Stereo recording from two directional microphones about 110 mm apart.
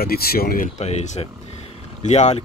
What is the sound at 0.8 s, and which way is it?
Speech, 90° left.